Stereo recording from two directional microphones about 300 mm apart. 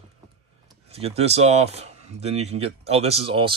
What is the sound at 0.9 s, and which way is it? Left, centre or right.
Speech, centre.